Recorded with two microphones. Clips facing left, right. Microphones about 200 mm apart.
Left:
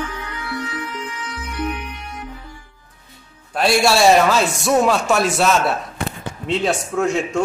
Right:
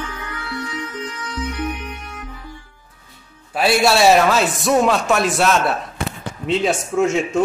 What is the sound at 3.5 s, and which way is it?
Speech, 5° right (ahead or behind).